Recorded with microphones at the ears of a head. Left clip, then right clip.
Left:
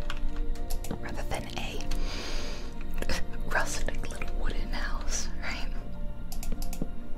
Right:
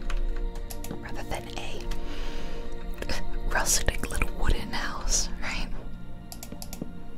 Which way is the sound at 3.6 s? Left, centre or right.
Right.